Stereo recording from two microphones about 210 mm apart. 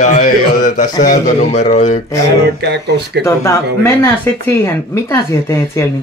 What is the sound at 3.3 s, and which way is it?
Speech, 15° left (ahead or behind).